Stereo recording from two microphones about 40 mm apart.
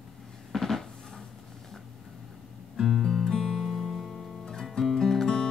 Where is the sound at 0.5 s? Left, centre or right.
Centre.